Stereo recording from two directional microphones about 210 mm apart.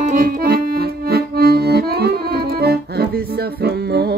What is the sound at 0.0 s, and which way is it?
Accordion, 40° right (ahead or behind).